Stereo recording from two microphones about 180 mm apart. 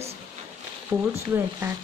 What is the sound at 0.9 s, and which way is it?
Speech, 10° right (ahead or behind).